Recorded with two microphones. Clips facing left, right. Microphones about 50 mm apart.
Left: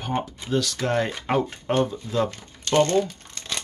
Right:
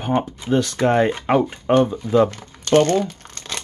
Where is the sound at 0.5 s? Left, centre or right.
Right.